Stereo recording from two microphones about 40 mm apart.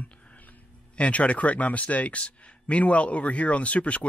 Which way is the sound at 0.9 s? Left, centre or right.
Left.